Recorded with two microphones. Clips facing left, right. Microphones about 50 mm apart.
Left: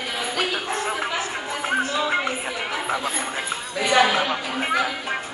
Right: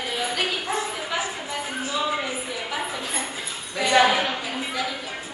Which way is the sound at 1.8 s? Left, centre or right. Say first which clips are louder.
Left 1 dB; left.